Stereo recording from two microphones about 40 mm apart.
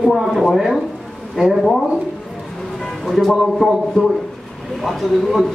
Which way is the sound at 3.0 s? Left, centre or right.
Centre.